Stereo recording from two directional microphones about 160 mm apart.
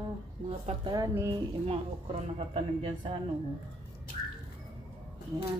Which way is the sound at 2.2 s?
35° right (ahead or behind).